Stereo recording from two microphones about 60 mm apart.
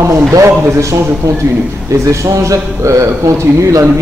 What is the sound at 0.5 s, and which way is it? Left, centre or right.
Speech, right.